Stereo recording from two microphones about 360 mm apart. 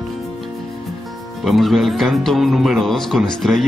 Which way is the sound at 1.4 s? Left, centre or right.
Centre.